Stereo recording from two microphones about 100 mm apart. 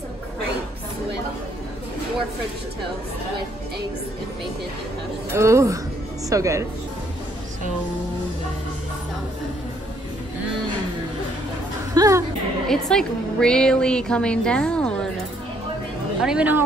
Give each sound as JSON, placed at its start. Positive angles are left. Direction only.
{"t": 5.3, "sound": "a woman's voice", "side_deg": -30}
{"t": 11.9, "sound": "music", "side_deg": -35}
{"t": 12.6, "sound": "a woman's voice", "side_deg": 5}
{"t": 16.2, "sound": "speech", "side_deg": -5}